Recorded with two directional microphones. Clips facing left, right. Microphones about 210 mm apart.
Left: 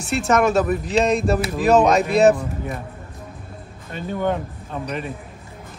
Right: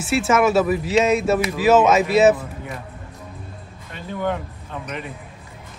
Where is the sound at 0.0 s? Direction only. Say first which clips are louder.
Right 1 dB; 5° right (ahead or behind).